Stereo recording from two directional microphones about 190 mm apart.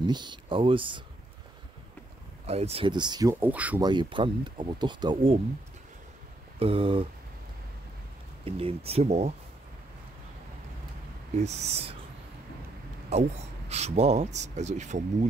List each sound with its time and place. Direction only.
0.0 s speech: 25° right (ahead or behind)
2.4 s speech: 35° right (ahead or behind); by 3.8 s 10° right (ahead or behind)
3.8 s speech: 25° right (ahead or behind)
6.6 s speech: 30° right (ahead or behind)
8.5 s speech: 30° right (ahead or behind)
11.3 s speech: 35° right (ahead or behind)
13.1 s speech: 35° right (ahead or behind)